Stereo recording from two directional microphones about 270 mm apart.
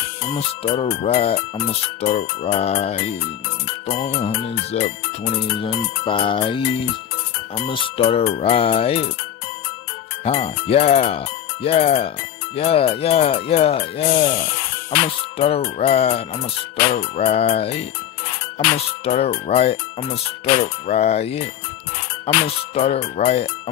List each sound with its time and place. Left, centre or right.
0.7 s speech: left
4.7 s speech: left
10.2 s speech: left
15.3 s speech: left
19.0 s speech: left